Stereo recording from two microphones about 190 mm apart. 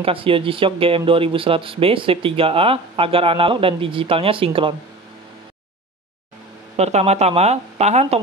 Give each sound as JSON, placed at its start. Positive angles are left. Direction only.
{"t": 0.0, "sound": "speech", "side_deg": -30}
{"t": 6.8, "sound": "speech", "side_deg": -35}